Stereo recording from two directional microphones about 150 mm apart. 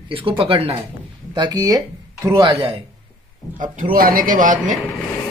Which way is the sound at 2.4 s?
35° right (ahead or behind).